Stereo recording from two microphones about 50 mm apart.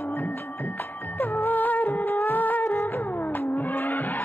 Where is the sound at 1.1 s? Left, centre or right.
Left.